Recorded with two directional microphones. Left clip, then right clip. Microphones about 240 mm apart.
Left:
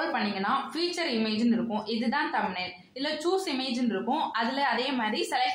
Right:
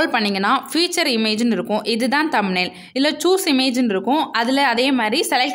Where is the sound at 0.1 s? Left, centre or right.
Right.